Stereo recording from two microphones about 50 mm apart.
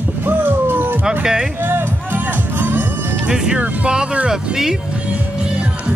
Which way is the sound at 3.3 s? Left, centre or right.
Centre.